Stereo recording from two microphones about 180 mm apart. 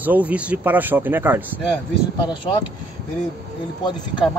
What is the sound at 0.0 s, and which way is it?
Speech, 10° right (ahead or behind).